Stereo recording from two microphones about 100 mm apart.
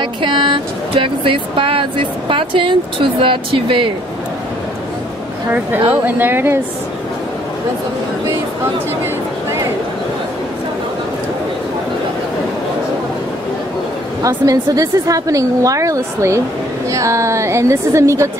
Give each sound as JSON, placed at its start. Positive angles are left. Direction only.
{"t": 0.0, "sound": "speech", "side_deg": -55}
{"t": 5.5, "sound": "a woman's voice", "side_deg": -15}
{"t": 14.2, "sound": "a woman's voice", "side_deg": -35}